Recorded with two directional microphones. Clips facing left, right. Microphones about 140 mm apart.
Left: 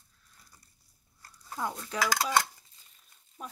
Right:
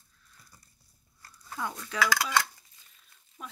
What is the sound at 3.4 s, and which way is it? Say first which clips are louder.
Speech: left 1 dB; 35° left (ahead or behind).